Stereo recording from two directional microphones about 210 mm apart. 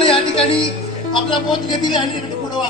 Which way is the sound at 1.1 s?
25° left (ahead or behind).